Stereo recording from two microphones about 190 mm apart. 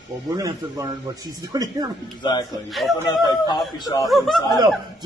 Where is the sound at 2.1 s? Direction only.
20° left (ahead or behind).